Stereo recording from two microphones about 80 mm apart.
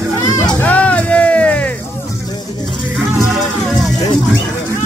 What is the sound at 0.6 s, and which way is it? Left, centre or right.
Music, centre.